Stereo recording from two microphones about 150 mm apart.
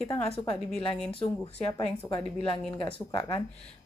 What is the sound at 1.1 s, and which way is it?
Speech, 40° left (ahead or behind).